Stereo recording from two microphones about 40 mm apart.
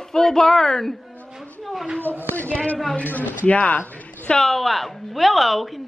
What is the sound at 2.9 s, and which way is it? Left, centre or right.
Speech, left.